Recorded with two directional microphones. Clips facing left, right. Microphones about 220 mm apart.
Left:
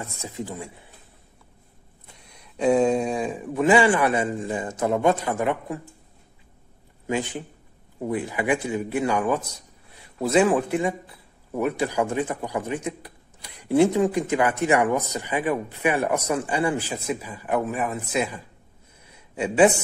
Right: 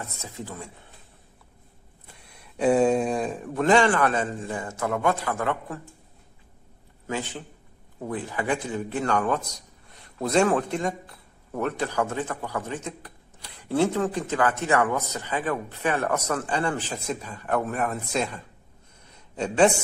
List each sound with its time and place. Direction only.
0.0 s speech: 15° left (ahead or behind)
2.2 s speech: 5° right (ahead or behind); by 5.8 s 15° left (ahead or behind)
7.1 s speech: 15° left (ahead or behind)
19.0 s a sound: 10° left (ahead or behind)